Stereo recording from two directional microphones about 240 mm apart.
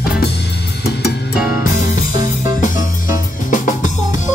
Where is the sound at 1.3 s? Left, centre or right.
Centre.